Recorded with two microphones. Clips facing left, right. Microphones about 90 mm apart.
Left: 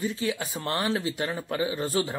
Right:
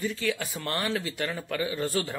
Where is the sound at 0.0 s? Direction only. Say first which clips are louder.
Left 1 dB; 25° left (ahead or behind).